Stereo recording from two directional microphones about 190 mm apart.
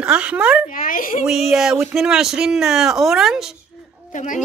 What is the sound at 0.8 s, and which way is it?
Speech, 50° left (ahead or behind).